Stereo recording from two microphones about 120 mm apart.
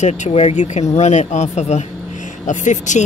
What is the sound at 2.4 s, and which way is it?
Speech, 90° left.